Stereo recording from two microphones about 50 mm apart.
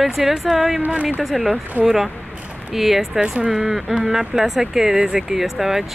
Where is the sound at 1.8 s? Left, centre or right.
Right.